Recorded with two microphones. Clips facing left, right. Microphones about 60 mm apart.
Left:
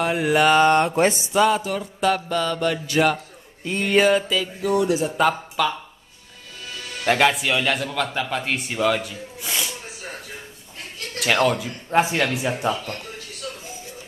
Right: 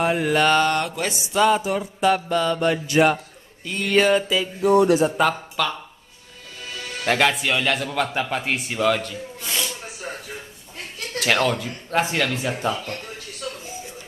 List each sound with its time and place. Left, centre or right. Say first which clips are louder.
0.1 s speech: left 1 dB; centre
0.7 s speech: left 6 dB; left
1.4 s speech: right 1 dB; centre
3.6 s mantra: left 2 dB; centre
3.9 s speech: even; centre
4.6 s speech: right 6 dB; right
4.8 s speech: right 4 dB; right
5.1 s speech: left 1 dB; centre
7.1 s speech: left 1 dB; centre
7.9 s speech: right 1 dB; centre
11.1 s speech: left 1 dB; centre